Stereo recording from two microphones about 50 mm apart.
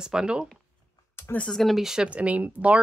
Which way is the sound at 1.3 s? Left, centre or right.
Left.